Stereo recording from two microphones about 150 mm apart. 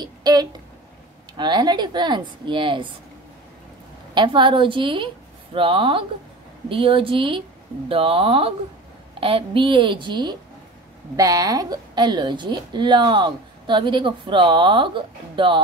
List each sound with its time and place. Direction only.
0.0 s a woman's voice: 25° right (ahead or behind)
4.1 s a woman's voice: 30° right (ahead or behind)